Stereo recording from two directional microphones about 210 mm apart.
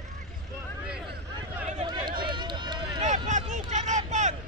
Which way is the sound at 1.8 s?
20° right (ahead or behind).